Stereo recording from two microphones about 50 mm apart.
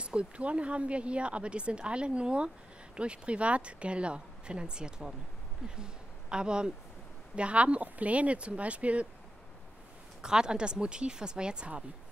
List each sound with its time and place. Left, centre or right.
0.0 s speech: right
10.2 s speech: centre